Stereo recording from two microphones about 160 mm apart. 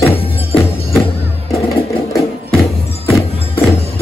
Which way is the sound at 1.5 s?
20° left (ahead or behind).